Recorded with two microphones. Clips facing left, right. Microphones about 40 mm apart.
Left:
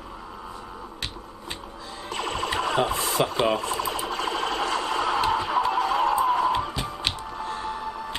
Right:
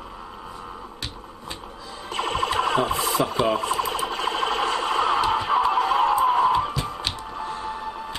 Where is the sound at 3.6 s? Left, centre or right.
Right.